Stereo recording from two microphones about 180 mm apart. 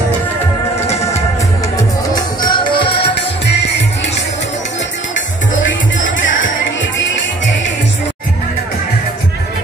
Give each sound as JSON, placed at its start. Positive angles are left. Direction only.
{"t": 2.4, "sound": "music", "side_deg": 25}
{"t": 3.4, "sound": "music", "side_deg": 75}
{"t": 5.9, "sound": "music", "side_deg": 45}